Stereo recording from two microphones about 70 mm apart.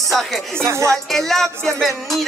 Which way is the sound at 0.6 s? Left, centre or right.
Right.